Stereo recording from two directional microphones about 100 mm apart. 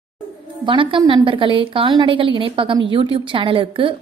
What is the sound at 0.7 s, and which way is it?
A woman's voice, 55° right (ahead or behind).